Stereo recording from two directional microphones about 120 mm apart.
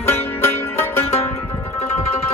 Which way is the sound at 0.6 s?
20° left (ahead or behind).